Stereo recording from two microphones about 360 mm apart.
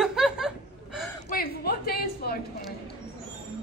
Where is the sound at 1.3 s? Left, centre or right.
Left.